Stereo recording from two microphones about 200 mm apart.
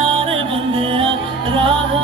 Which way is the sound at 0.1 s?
25° right (ahead or behind).